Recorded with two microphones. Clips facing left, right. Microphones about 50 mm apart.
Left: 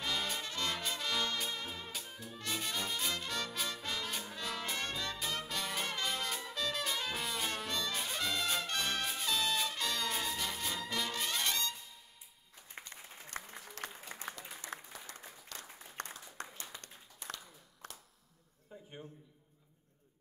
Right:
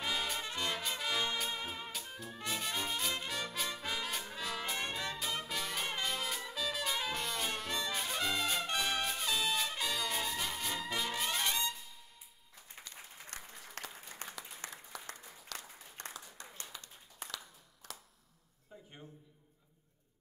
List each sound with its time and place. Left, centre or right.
0.0 s brass instrument: centre
0.4 s music: centre
1.9 s music: centre
2.2 s brass instrument: centre
8.7 s trumpet: centre
9.9 s music: centre
11.1 s brass instrument: centre
12.8 s applause: left
14.6 s applause: right
15.5 s applause: right
16.0 s applause: left
17.8 s a sound: left